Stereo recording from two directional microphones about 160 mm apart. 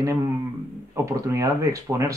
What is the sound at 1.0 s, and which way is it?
Speech, 20° right (ahead or behind).